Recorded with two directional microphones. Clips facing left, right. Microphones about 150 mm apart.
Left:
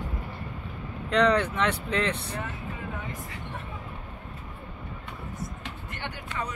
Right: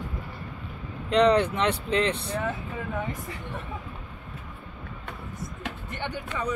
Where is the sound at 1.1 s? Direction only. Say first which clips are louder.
Right 3 dB; 25° right (ahead or behind).